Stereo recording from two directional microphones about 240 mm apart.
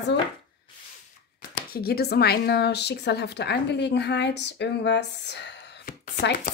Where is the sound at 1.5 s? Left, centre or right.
Left.